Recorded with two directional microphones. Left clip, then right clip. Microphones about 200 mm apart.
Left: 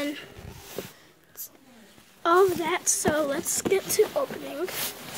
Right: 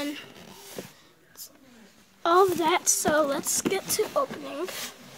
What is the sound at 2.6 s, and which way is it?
Speech, 15° right (ahead or behind).